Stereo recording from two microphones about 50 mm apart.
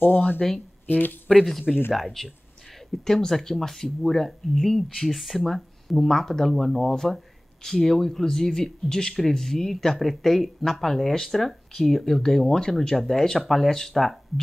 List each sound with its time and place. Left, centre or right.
0.0 s speech: left
1.3 s speech: centre